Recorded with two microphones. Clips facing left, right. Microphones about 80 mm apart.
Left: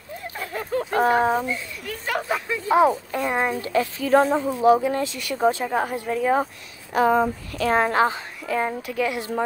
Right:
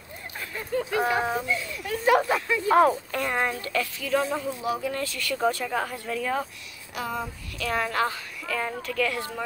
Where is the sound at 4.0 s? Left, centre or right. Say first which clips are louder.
Left 9 dB; left.